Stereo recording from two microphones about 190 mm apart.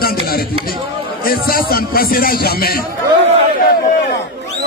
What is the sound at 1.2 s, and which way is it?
Speech, 50° left (ahead or behind).